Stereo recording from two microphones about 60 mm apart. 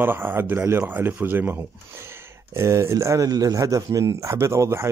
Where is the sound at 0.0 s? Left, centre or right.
Right.